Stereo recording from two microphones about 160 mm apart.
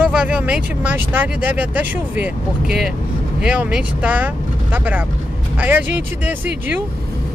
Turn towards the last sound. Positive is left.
turn(degrees=-10)  # may be behind; listen again after turning